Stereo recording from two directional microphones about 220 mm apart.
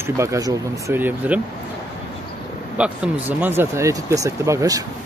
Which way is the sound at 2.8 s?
5° right (ahead or behind).